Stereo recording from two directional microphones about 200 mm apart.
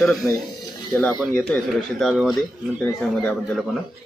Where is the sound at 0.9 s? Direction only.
5° left (ahead or behind).